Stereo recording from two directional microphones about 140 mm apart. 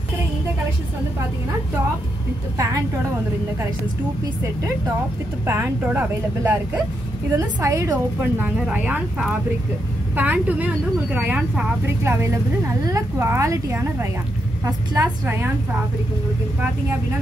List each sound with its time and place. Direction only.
2.5 s a woman's voice: 20° right (ahead or behind)
5.5 s a woman's voice: 15° right (ahead or behind)